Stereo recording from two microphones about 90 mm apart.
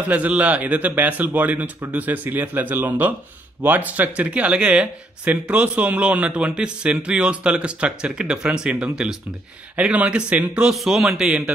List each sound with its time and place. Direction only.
0.1 s a man's voice: 15° right (ahead or behind)